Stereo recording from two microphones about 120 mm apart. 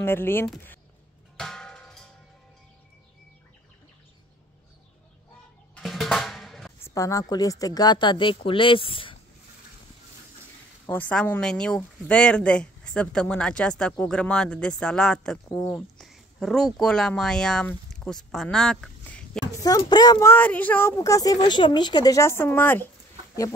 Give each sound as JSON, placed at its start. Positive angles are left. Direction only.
{"t": 0.0, "sound": "a woman's voice", "side_deg": 20}
{"t": 1.3, "sound": "a sound", "side_deg": 5}
{"t": 5.8, "sound": "drum", "side_deg": 0}
{"t": 6.8, "sound": "speech", "side_deg": 25}
{"t": 10.9, "sound": "speech", "side_deg": 15}
{"t": 19.6, "sound": "speech", "side_deg": 35}
{"t": 20.2, "sound": "a woman's voice", "side_deg": 20}